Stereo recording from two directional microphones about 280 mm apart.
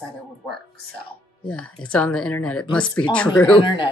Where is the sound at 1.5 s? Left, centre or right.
Centre.